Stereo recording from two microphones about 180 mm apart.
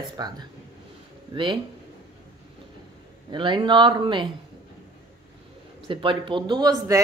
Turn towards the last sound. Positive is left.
turn(degrees=-20)  # may be behind; listen again after turning